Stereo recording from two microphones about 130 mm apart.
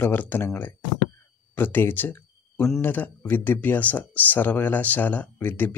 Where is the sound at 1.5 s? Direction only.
15° left (ahead or behind).